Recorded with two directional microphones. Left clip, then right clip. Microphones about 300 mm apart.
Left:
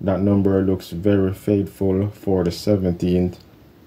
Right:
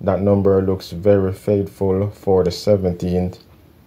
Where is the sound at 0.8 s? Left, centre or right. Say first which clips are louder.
Right 4 dB; centre.